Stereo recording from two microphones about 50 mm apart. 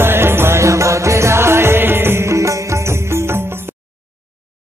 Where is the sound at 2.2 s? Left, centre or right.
Right.